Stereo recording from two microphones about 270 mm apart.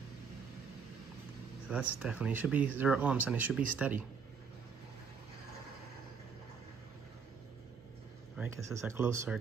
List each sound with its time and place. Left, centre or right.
1.7 s speech: centre
8.4 s speech: centre